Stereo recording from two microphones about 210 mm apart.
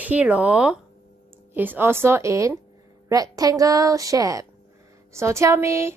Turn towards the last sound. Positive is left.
turn(degrees=-15)  # may be behind; listen again after turning